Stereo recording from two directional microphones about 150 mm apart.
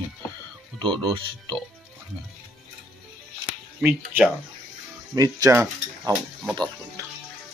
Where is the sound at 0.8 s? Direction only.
35° right (ahead or behind).